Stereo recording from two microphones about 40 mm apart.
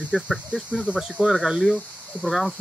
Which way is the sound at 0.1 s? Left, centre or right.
Centre.